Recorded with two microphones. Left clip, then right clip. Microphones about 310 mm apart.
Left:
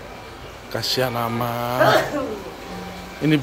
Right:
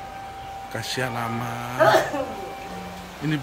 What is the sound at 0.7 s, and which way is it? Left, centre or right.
Speech, centre.